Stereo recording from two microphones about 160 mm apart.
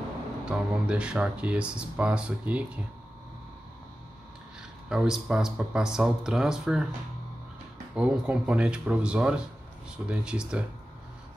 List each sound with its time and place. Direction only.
0.5 s speech: 5° right (ahead or behind)
4.8 s speech: 5° right (ahead or behind)
7.9 s speech: 5° right (ahead or behind)